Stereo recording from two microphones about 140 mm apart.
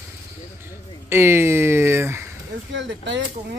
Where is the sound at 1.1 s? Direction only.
15° right (ahead or behind).